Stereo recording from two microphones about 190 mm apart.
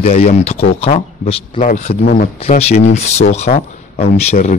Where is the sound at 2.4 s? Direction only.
35° left (ahead or behind).